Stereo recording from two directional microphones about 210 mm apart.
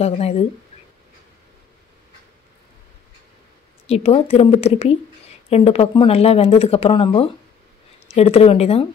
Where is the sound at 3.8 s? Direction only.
30° left (ahead or behind).